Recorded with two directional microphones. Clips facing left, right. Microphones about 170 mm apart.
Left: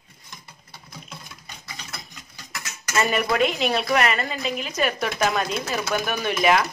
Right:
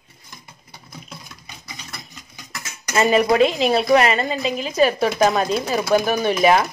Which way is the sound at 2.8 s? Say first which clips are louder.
Right 5 dB; 20° right (ahead or behind).